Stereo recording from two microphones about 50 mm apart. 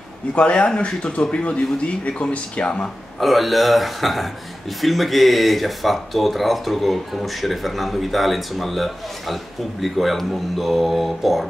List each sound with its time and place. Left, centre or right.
0.3 s a man's voice: left
3.2 s speech: centre